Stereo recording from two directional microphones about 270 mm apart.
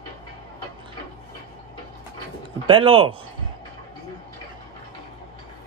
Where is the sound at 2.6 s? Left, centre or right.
Centre.